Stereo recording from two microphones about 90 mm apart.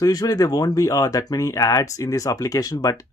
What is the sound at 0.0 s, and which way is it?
Speech, 45° left (ahead or behind).